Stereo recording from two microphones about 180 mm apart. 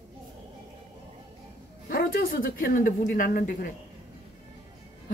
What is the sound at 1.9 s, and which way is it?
Speech, 55° left (ahead or behind).